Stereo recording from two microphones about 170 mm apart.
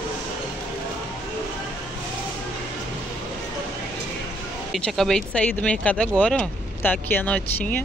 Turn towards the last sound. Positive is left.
turn(degrees=10)  # may be behind; listen again after turning